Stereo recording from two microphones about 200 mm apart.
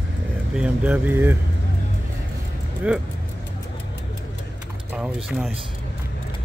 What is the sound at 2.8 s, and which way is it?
Speech, 5° right (ahead or behind).